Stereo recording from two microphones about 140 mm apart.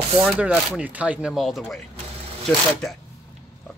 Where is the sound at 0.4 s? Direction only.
10° right (ahead or behind).